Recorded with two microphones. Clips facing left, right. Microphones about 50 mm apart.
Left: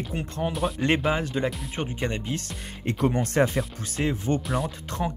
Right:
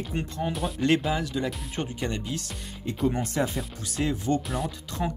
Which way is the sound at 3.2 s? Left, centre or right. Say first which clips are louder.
Left 5 dB; left.